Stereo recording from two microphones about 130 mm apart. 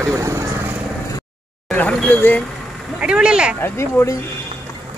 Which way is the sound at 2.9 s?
5° right (ahead or behind).